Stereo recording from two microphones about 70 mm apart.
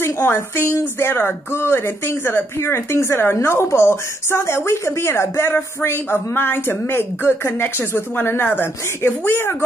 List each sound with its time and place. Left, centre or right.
0.0 s a woman's voice: left